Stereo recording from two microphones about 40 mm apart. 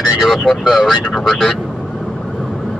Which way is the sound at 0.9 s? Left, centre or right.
Centre.